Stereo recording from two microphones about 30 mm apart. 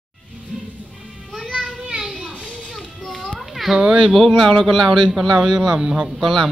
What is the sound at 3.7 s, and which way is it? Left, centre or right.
Speech, right.